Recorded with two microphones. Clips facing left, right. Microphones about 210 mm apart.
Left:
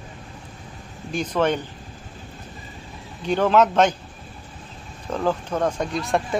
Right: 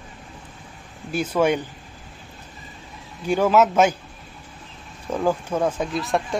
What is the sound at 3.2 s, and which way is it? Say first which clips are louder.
Speech: even; 10° right (ahead or behind).